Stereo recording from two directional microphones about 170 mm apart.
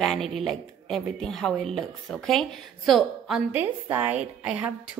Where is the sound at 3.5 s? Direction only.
10° right (ahead or behind).